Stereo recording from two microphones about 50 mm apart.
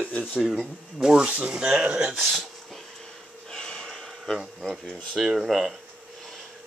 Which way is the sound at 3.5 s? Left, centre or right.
Centre.